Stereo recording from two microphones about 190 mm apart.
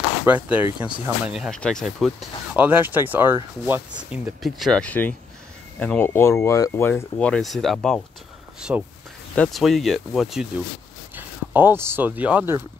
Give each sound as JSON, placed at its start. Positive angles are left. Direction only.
{"t": 0.2, "sound": "speech", "side_deg": -10}
{"t": 2.5, "sound": "speech", "side_deg": -10}